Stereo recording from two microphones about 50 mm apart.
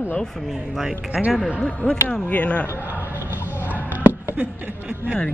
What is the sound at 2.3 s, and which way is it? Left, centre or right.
Speech, left.